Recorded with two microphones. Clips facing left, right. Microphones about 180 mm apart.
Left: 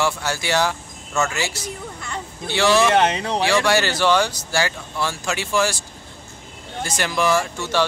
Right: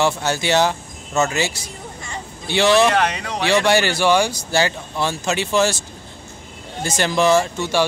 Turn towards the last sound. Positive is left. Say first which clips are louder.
# right 4 dB
turn(degrees=-20)  # may be behind; listen again after turning